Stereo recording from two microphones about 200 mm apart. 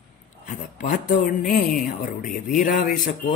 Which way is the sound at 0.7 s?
40° left (ahead or behind).